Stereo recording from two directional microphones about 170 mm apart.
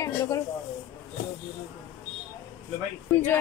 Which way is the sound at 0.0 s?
20° left (ahead or behind).